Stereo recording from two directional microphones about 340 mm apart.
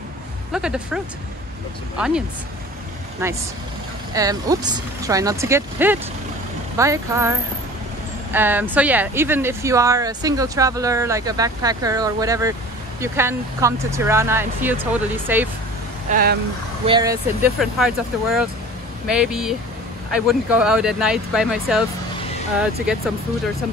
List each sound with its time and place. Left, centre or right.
0.5 s speech: centre
4.1 s speech: centre
16.1 s speech: right
16.8 s speech: centre